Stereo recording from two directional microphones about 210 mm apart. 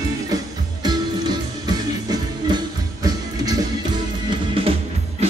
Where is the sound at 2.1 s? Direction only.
20° right (ahead or behind).